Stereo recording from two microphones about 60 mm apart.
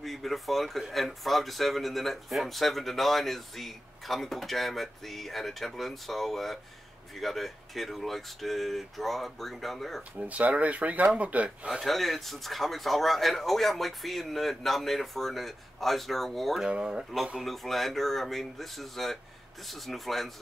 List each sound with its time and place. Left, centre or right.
0.0 s speech: centre
10.1 s speech: right
11.8 s speech: centre
16.6 s speech: centre
17.4 s speech: centre